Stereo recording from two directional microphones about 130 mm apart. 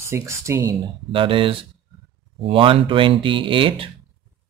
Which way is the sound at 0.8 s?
40° right (ahead or behind).